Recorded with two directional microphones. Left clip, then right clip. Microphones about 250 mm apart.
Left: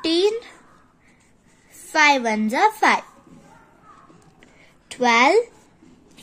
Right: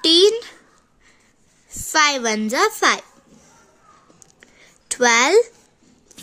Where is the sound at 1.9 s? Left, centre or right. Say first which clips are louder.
Left 1 dB; right.